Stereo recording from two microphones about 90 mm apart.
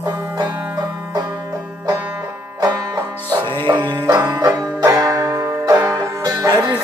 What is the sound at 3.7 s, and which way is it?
Music, 35° right (ahead or behind).